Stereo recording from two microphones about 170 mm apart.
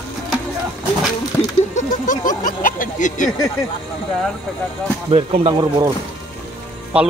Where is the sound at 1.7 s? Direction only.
45° left (ahead or behind).